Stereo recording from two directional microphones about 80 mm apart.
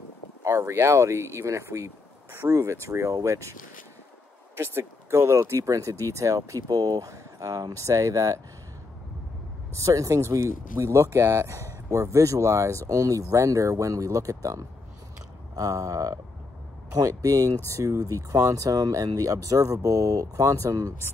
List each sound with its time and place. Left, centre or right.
0.4 s speech: right
4.6 s speech: right
9.8 s speech: right